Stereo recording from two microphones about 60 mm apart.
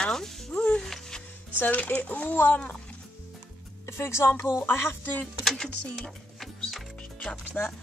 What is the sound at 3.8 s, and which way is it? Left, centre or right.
Speech, left.